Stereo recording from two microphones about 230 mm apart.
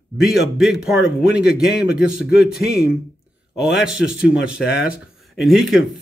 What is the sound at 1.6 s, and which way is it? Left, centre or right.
Speech, left.